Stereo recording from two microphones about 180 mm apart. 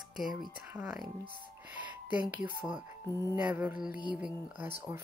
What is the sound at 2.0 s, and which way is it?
Speech, 10° right (ahead or behind).